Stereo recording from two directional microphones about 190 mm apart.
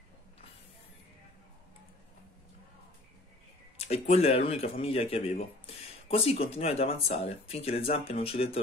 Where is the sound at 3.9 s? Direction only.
35° left (ahead or behind).